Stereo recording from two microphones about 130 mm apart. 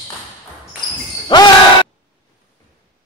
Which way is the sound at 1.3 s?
35° left (ahead or behind).